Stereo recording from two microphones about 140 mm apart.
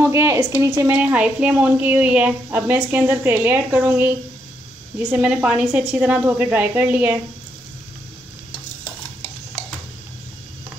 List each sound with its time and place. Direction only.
0.0 s a woman's voice: 20° right (ahead or behind)
0.9 s a woman's voice: 10° right (ahead or behind)